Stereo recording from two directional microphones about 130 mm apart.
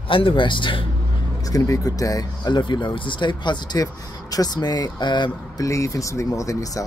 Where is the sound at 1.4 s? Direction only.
25° left (ahead or behind).